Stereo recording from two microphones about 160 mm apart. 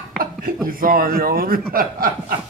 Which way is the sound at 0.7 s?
60° right (ahead or behind).